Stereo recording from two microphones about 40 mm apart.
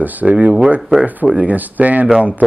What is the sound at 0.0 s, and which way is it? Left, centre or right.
Speech, right.